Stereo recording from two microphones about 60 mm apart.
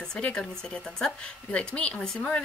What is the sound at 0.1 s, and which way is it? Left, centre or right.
A woman's voice, centre.